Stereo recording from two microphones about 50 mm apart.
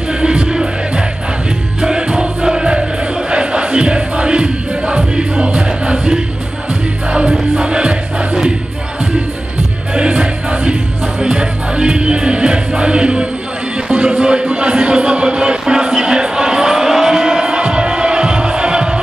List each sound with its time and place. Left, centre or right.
0.2 s music: centre
9.9 s music: right